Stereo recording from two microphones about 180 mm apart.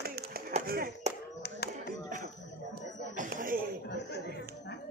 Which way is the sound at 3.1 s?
45° right (ahead or behind).